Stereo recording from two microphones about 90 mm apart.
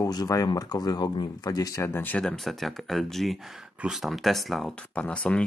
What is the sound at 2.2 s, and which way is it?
Speech, 5° left (ahead or behind).